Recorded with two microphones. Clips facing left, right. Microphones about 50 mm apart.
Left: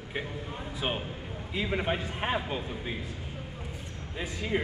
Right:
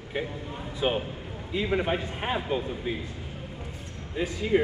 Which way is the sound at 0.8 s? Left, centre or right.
Centre.